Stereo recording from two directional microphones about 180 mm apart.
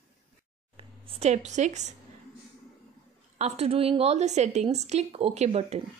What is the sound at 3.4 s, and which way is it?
A woman's voice, 35° right (ahead or behind).